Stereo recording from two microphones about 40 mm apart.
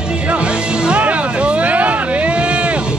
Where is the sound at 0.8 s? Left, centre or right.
Right.